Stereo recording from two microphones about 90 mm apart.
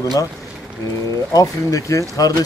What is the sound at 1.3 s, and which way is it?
Speech, 40° left (ahead or behind).